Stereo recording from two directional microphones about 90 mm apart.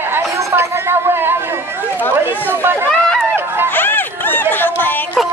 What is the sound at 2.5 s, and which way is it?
Chatter, 25° right (ahead or behind).